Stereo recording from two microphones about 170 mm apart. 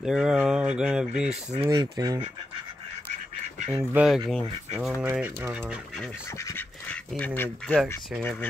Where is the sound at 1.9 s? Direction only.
20° right (ahead or behind).